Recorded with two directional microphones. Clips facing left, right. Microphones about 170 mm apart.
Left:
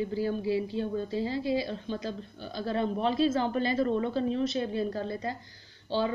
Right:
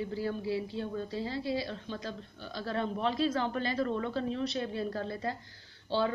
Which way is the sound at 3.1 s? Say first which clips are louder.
Left 6 dB; 25° left (ahead or behind).